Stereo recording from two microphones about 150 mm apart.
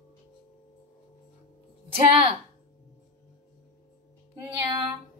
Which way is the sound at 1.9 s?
40° right (ahead or behind).